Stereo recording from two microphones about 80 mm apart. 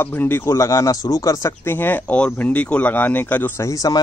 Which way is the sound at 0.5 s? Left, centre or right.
Left.